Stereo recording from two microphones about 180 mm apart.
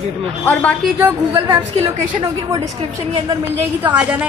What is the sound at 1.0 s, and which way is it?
Speech, 15° right (ahead or behind).